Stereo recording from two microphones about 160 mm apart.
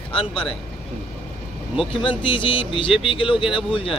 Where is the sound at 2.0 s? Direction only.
30° left (ahead or behind).